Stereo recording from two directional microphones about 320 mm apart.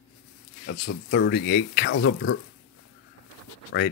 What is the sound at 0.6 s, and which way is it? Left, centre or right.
Speech, left.